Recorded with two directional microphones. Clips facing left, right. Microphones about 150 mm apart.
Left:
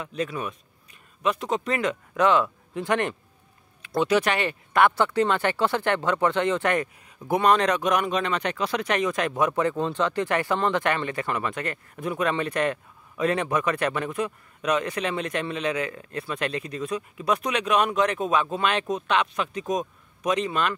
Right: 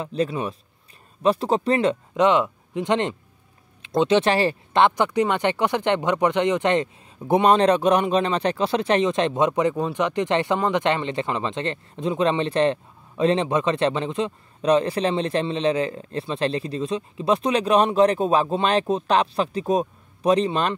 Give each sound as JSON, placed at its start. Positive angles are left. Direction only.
{"t": 0.0, "sound": "speech", "side_deg": -30}